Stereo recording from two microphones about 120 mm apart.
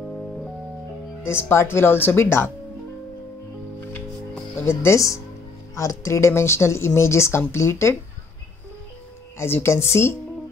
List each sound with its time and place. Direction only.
1.2 s speech: 20° left (ahead or behind)
4.6 s speech: 20° left (ahead or behind)
9.4 s speech: 20° left (ahead or behind)